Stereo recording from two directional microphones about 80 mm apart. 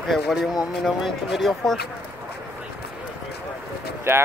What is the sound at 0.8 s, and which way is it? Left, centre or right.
Speech, centre.